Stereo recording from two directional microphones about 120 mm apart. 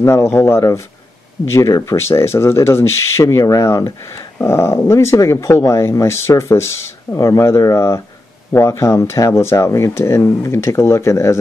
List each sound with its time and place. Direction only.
0.0 s speech: 25° left (ahead or behind)